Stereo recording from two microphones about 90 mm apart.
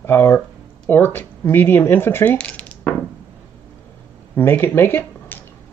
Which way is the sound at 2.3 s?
15° left (ahead or behind).